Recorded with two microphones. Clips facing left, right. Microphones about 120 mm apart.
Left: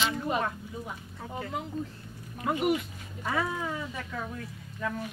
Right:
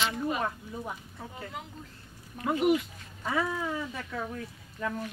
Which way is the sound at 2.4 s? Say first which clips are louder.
Right 2 dB; 15° left (ahead or behind).